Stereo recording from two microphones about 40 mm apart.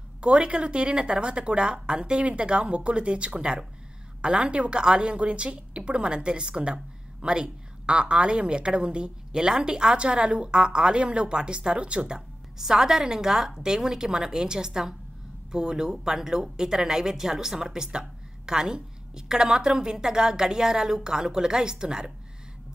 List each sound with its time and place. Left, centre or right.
0.2 s a woman's voice: right
12.5 s speech: centre